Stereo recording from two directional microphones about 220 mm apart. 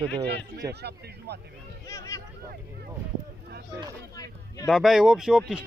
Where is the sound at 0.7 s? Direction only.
50° right (ahead or behind).